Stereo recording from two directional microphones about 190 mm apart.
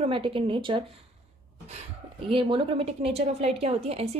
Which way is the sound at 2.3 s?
25° right (ahead or behind).